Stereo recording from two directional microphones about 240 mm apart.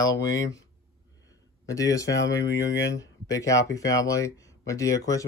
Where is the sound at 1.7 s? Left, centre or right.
Centre.